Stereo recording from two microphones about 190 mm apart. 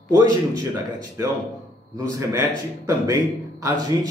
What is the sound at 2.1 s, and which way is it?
A man's voice, 15° right (ahead or behind).